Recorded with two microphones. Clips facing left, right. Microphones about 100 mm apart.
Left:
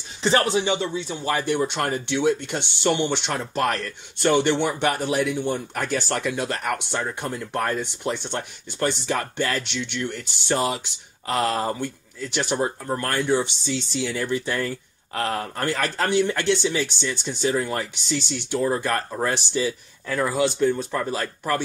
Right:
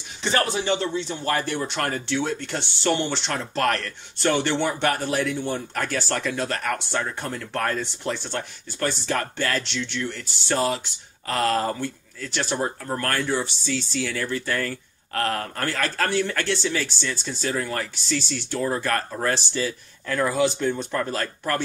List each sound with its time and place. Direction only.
0.2 s speech: 30° left (ahead or behind)
0.7 s speech: 10° left (ahead or behind)
20.2 s speech: centre (ahead or behind)